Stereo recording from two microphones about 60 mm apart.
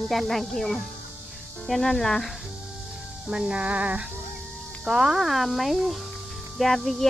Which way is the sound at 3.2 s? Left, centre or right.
Centre.